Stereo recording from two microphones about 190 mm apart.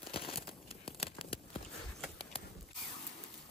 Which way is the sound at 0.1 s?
30° left (ahead or behind).